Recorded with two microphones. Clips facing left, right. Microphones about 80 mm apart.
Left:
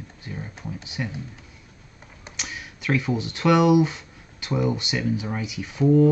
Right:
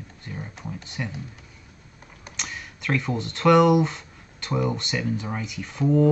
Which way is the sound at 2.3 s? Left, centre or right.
Centre.